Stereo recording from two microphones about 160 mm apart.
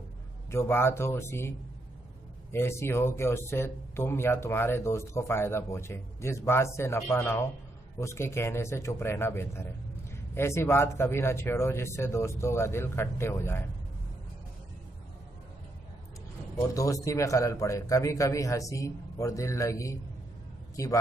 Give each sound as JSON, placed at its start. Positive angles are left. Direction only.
{"t": 0.5, "sound": "speech", "side_deg": 15}
{"t": 2.5, "sound": "speech", "side_deg": 15}
{"t": 16.5, "sound": "a man's voice", "side_deg": 20}